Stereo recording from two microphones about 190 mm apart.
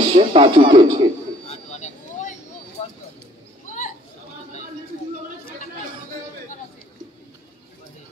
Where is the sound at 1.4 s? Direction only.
35° left (ahead or behind).